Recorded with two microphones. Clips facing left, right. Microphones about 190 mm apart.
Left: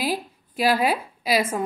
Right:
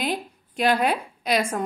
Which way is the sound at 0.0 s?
5° left (ahead or behind).